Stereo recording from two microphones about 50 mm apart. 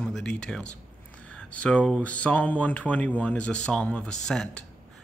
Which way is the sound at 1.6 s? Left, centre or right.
Left.